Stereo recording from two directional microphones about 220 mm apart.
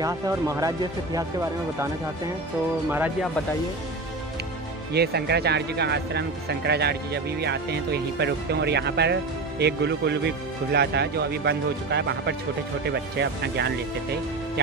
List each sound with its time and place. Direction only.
0.0 s speech: 15° right (ahead or behind)
2.9 s speech: 5° right (ahead or behind)
4.9 s speech: 45° right (ahead or behind)